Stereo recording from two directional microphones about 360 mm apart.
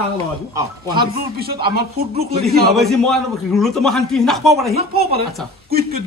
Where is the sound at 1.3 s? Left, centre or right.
Right.